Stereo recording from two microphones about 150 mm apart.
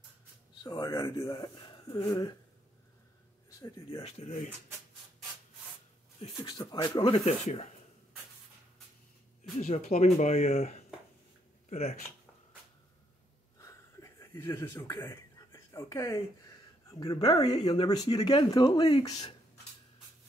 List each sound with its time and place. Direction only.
0.7 s speech: 30° left (ahead or behind)
3.4 s speech: 25° left (ahead or behind)
6.2 s speech: 30° left (ahead or behind)
7.2 s speech: 45° left (ahead or behind)
9.4 s speech: 50° left (ahead or behind)
13.6 s a sound: 20° left (ahead or behind)
17.0 s speech: 25° left (ahead or behind)